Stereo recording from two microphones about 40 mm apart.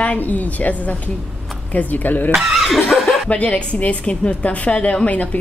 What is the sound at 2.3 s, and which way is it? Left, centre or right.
Speech, centre.